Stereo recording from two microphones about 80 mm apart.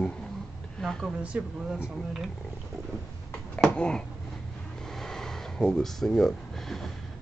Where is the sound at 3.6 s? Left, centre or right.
Centre.